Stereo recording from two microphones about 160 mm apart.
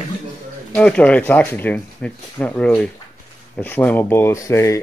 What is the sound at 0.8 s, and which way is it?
Speech, 5° left (ahead or behind).